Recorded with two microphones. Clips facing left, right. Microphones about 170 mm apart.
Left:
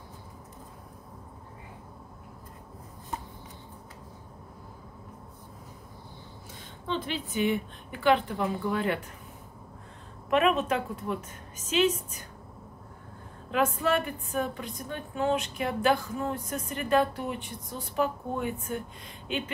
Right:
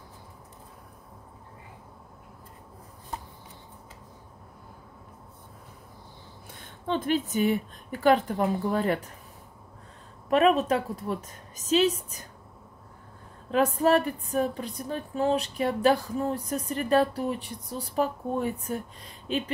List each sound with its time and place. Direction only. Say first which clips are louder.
6.9 s speech: right 6 dB; 50° right (ahead or behind)
10.3 s speech: right 3 dB; 35° right (ahead or behind)
13.5 s speech: right 4 dB; 35° right (ahead or behind)